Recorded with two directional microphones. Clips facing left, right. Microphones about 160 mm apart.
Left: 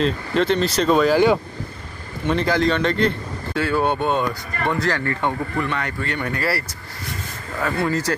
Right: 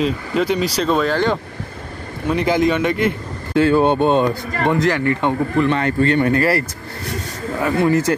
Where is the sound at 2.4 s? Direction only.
15° right (ahead or behind).